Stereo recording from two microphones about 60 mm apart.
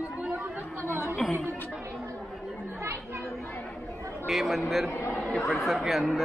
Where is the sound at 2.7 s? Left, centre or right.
Right.